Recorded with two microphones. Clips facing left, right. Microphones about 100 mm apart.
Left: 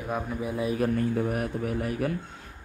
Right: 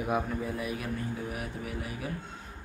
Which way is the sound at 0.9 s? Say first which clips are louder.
Left 9 dB; 55° left (ahead or behind).